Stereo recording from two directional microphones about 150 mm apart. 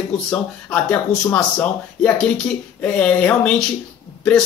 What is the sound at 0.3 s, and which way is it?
Speech, 5° left (ahead or behind).